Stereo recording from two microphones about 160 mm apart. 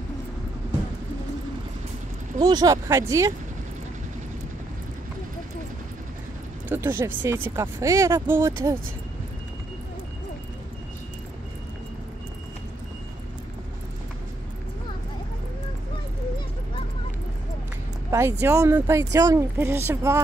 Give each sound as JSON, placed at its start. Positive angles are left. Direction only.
{"t": 2.3, "sound": "speech", "side_deg": -25}
{"t": 6.7, "sound": "speech", "side_deg": -15}
{"t": 18.4, "sound": "speech", "side_deg": -20}